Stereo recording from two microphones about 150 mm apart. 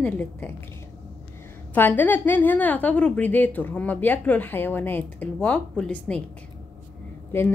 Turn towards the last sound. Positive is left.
turn(degrees=15)  # may be behind; listen again after turning